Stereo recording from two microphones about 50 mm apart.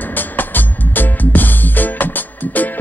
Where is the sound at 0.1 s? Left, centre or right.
Left.